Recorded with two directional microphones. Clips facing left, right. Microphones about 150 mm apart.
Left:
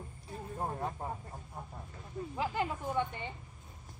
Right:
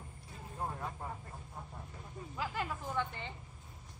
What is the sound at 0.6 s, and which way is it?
Vehicle, 35° left (ahead or behind).